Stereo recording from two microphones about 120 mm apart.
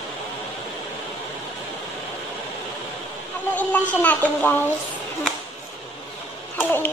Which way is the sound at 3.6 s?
10° left (ahead or behind).